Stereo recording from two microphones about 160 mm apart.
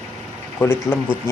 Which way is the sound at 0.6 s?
15° left (ahead or behind).